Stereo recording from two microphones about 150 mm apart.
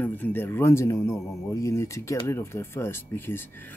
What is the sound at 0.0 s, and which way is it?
Speech, 10° left (ahead or behind).